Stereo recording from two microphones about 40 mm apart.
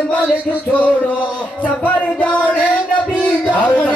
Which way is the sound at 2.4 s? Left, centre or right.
Right.